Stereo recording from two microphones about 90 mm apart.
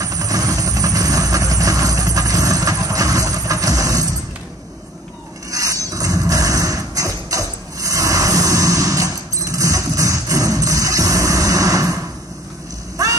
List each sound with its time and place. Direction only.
0.0 s vehicle: 40° right (ahead or behind)
5.5 s music: 40° right (ahead or behind)
12.9 s vehicle: 40° right (ahead or behind)